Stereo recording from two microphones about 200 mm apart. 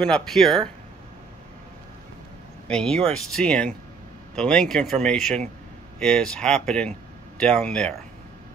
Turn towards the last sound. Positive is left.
turn(degrees=5)  # may be behind; listen again after turning